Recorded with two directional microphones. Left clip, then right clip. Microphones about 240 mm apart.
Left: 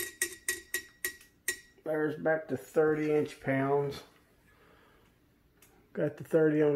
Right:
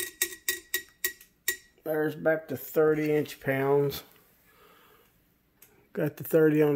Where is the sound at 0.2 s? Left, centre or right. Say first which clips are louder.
Right 3 dB; right.